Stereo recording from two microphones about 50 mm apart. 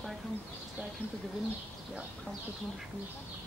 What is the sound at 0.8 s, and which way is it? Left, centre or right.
Speech, right.